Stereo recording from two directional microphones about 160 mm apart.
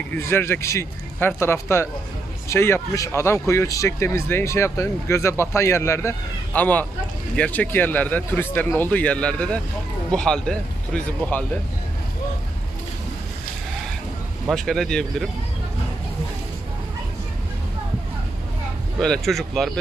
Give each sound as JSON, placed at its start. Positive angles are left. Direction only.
{"t": 0.1, "sound": "speech", "side_deg": 15}
{"t": 14.5, "sound": "speech", "side_deg": 5}
{"t": 18.9, "sound": "speech", "side_deg": 5}